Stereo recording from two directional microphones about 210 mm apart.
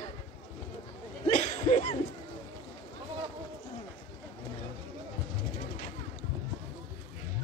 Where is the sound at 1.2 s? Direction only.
30° left (ahead or behind).